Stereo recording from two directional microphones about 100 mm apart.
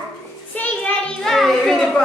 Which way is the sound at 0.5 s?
15° left (ahead or behind).